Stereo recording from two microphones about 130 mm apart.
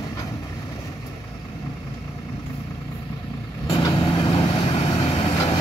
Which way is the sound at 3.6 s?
40° left (ahead or behind).